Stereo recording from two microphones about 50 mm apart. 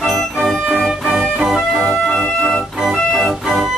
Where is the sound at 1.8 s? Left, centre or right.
Centre.